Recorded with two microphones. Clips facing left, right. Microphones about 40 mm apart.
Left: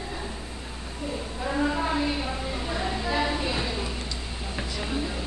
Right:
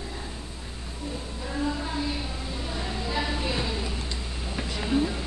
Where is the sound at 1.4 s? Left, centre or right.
Left; by 5.2 s centre.